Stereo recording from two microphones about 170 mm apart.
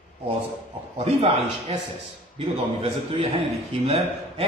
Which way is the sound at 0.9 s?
35° right (ahead or behind).